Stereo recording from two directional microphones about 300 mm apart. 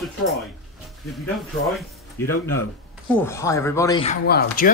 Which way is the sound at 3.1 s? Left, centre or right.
Centre.